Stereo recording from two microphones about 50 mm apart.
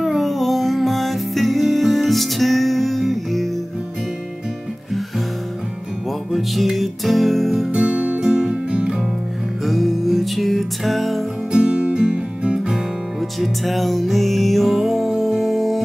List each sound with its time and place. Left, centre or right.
0.0 s music: centre
6.3 s music: centre
7.7 s music: right
9.7 s music: centre
11.5 s music: centre
13.4 s music: centre